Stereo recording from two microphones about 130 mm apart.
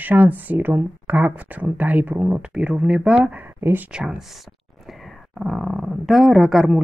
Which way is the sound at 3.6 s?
20° right (ahead or behind).